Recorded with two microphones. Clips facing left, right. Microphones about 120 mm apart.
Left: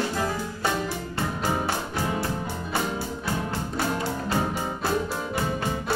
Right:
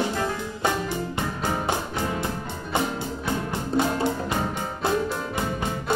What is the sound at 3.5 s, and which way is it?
Music, 20° right (ahead or behind).